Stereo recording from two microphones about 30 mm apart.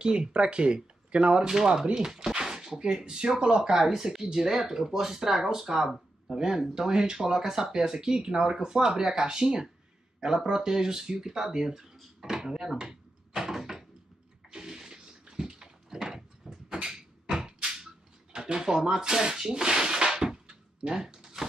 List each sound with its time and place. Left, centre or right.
0.0 s speech: right
1.5 s speech: centre
3.7 s speech: centre
6.9 s speech: right
13.3 s door: centre
14.6 s bathtub: centre
16.4 s a sound: right
18.9 s speech: right
19.6 s a sound: right